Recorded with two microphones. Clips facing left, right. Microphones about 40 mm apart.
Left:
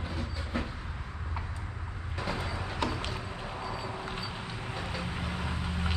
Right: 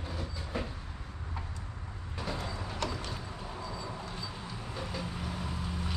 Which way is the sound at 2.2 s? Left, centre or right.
Left.